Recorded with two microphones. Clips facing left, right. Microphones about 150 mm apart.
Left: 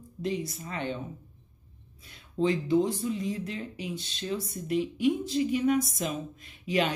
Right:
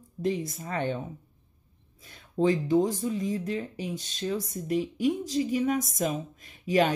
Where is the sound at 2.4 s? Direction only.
45° right (ahead or behind).